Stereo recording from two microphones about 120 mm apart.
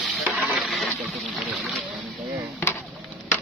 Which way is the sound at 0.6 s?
Centre (ahead or behind).